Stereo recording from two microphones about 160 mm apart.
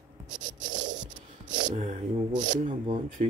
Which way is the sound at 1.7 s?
50° right (ahead or behind).